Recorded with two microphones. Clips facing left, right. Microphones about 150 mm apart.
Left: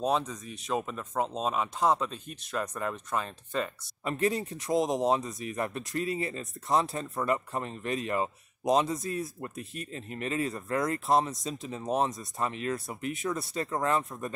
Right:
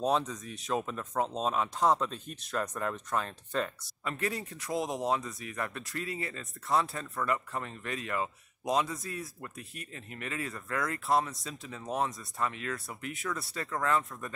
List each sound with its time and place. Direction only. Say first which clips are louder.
0.0 s speech: left 1 dB; centre (ahead or behind)
4.0 s speech: left 6 dB; 20° left (ahead or behind)